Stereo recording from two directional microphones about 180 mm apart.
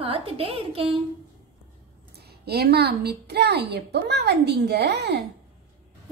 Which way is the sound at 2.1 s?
65° right (ahead or behind).